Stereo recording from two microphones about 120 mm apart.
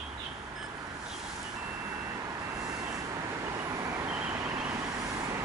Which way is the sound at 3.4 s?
25° right (ahead or behind).